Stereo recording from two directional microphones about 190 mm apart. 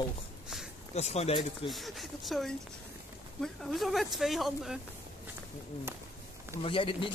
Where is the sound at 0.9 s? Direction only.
35° left (ahead or behind).